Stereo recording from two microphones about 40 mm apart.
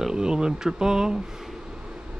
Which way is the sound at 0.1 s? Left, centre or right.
Centre.